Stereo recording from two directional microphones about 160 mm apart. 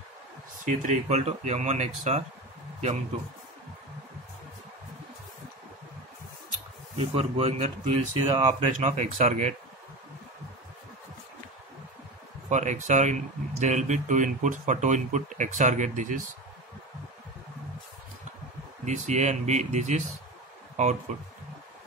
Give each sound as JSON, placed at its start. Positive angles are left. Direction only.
{"t": 0.7, "sound": "speech", "side_deg": -50}
{"t": 7.0, "sound": "speech", "side_deg": -40}
{"t": 12.4, "sound": "speech", "side_deg": -50}
{"t": 18.9, "sound": "speech", "side_deg": -45}